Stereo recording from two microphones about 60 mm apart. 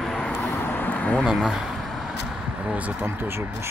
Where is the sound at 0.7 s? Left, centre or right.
Left.